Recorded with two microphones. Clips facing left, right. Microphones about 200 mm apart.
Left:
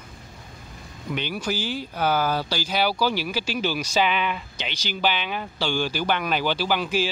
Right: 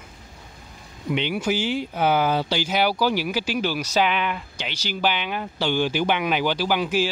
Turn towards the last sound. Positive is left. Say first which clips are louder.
# right 2 dB
turn(degrees=-15)  # may be behind; listen again after turning